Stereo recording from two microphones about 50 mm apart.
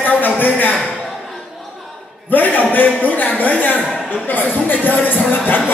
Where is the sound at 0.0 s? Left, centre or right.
Left.